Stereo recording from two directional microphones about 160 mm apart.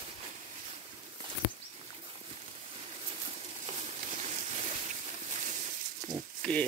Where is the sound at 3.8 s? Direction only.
45° right (ahead or behind).